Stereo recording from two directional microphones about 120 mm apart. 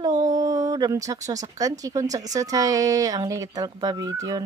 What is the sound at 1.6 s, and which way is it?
Speech, 30° right (ahead or behind).